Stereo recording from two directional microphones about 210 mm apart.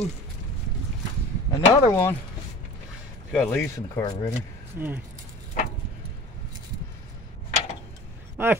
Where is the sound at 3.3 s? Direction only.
5° left (ahead or behind).